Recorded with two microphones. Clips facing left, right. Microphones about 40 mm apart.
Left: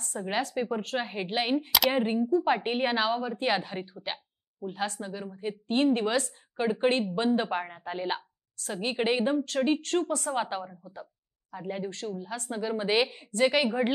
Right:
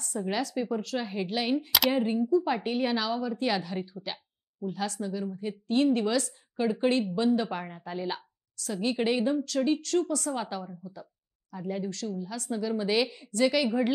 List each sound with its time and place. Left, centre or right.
0.0 s a woman's voice: left